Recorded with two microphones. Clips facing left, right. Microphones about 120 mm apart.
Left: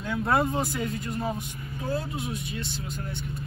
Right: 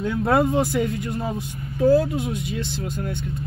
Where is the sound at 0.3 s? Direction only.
70° right (ahead or behind).